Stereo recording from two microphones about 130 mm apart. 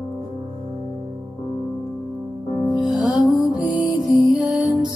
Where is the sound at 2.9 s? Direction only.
Centre (ahead or behind).